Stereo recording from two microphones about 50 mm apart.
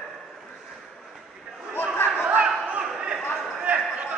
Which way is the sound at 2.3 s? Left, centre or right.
Right.